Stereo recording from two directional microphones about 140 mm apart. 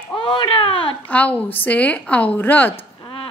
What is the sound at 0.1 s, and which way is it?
Speech, 35° left (ahead or behind).